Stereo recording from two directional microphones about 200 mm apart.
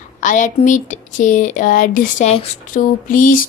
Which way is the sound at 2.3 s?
40° left (ahead or behind).